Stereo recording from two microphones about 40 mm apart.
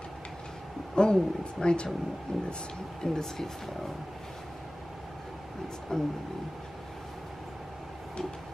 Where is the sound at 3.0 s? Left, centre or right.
Centre.